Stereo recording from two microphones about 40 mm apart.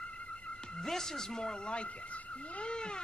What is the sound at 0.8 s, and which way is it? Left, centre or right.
Speech, centre.